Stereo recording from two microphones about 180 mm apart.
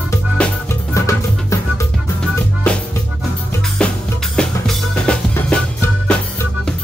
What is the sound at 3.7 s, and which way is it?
Drum kit, 5° left (ahead or behind).